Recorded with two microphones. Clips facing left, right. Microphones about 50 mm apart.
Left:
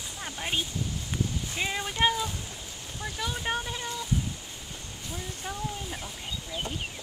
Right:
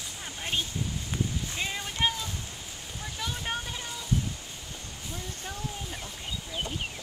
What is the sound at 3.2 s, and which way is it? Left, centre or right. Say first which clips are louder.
Vehicle: left 3 dB; centre.